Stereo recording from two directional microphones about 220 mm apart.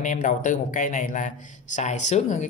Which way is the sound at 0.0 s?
35° left (ahead or behind).